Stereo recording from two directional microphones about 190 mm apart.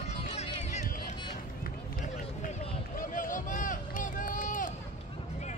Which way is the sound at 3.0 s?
45° left (ahead or behind).